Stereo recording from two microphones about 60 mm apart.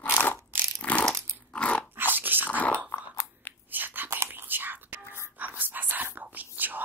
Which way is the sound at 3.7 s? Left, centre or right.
Right.